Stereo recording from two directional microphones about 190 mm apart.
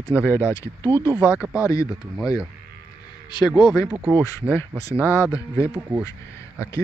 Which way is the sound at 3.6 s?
25° left (ahead or behind).